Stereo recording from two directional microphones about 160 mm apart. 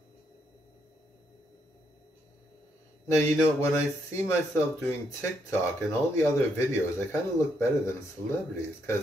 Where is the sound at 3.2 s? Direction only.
15° left (ahead or behind).